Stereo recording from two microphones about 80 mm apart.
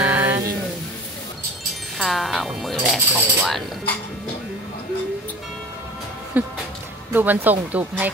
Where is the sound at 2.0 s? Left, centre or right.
Centre.